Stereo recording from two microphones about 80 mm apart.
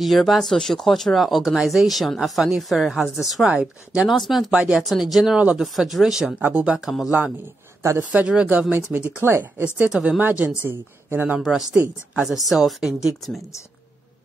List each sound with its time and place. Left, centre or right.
0.0 s speech: centre
4.1 s speech: centre
4.5 s speech: centre
6.4 s speech: centre
6.7 s speech: centre
7.1 s speech: centre
9.8 s speech: centre
10.7 s speech: right
11.3 s speech: centre
11.7 s speech: centre
12.3 s speech: centre